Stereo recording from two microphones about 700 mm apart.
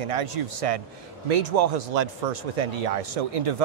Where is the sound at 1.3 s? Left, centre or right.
Right.